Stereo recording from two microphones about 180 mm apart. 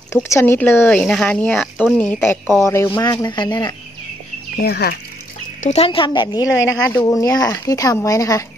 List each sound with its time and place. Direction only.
0.1 s a woman's voice: 15° left (ahead or behind)
4.6 s speech: 60° left (ahead or behind)
5.6 s speech: 40° left (ahead or behind)
5.9 s speech: 25° left (ahead or behind)